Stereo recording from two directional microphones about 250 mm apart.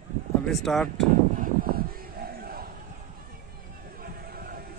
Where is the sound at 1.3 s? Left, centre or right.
Right.